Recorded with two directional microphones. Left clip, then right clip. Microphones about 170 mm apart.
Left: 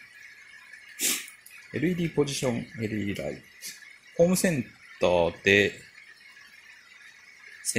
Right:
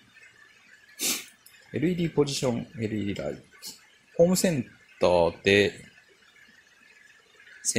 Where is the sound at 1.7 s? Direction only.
5° right (ahead or behind).